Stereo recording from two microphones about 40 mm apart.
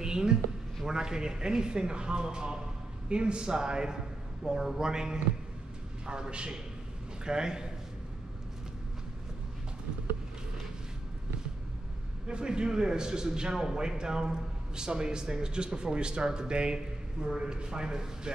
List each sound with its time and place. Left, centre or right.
0.0 s a sound: centre
0.8 s a man's voice: centre
12.3 s a man's voice: right